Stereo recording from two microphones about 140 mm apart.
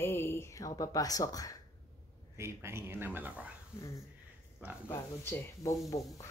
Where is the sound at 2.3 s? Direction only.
20° right (ahead or behind).